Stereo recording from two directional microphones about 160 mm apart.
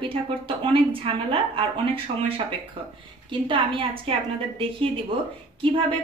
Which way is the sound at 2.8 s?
35° right (ahead or behind).